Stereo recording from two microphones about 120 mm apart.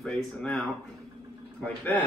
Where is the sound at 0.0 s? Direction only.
5° left (ahead or behind).